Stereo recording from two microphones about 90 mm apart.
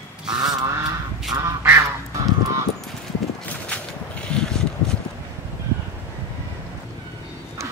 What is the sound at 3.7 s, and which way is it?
Vehicle, 10° left (ahead or behind).